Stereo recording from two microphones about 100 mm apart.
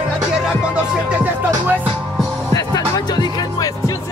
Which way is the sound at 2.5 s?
40° left (ahead or behind).